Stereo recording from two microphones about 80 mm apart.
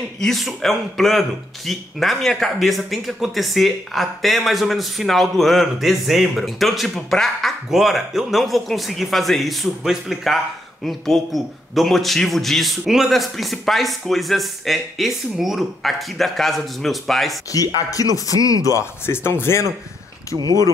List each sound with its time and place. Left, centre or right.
0.2 s speech: centre
17.5 s speech: left